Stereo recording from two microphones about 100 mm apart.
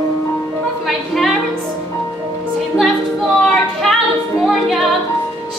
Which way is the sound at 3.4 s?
5° left (ahead or behind).